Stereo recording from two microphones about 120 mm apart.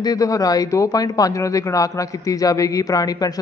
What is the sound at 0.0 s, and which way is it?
Speech, 30° left (ahead or behind).